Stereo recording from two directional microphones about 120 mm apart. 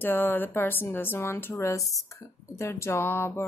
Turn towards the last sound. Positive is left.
turn(degrees=20)  # may be behind; listen again after turning